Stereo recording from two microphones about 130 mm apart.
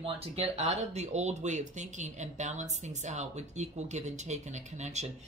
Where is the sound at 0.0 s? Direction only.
55° right (ahead or behind).